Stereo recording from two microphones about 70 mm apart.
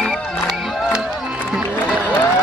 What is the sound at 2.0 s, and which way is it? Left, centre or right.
Crowd, left.